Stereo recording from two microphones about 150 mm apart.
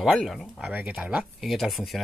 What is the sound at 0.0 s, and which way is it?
Speech, centre (ahead or behind).